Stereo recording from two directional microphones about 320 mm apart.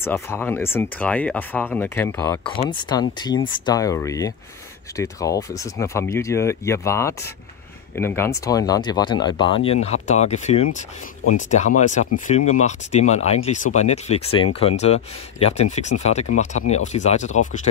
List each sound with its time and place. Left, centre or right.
0.0 s speech: centre; by 17.6 s left